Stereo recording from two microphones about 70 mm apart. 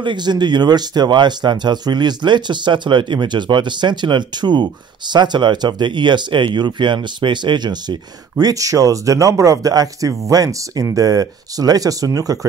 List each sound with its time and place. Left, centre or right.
0.1 s speech: right